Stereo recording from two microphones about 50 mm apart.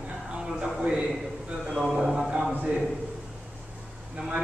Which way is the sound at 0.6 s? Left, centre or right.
Centre.